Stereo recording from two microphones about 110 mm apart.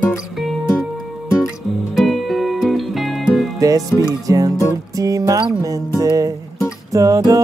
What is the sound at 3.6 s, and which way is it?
Music, 30° right (ahead or behind).